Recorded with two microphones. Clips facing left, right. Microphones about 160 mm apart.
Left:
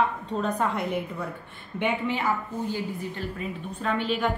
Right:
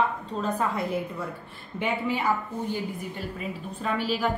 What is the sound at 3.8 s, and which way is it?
Speech, 5° right (ahead or behind).